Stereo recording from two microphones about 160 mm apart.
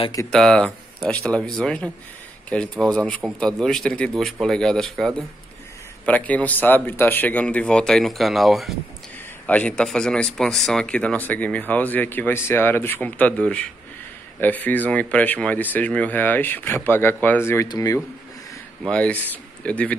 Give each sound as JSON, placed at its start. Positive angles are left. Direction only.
{"t": 0.3, "sound": "a man's voice", "side_deg": 5}
{"t": 18.9, "sound": "speech", "side_deg": 5}